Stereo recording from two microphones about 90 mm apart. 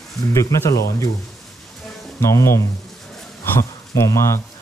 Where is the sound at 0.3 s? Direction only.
35° left (ahead or behind).